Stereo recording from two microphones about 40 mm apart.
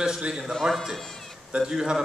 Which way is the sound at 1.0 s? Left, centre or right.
Centre.